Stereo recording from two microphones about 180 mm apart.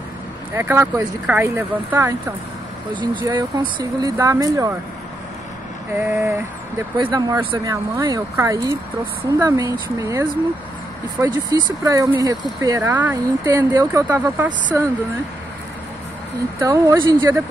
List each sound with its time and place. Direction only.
0.5 s speech: 10° right (ahead or behind)
2.9 s speech: 25° right (ahead or behind)
5.9 s speech: 10° right (ahead or behind)
7.0 s speech: 25° right (ahead or behind)
16.5 s speech: 15° right (ahead or behind)